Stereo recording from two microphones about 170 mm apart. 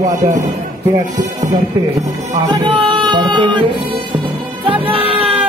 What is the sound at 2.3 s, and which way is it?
Music, 25° right (ahead or behind).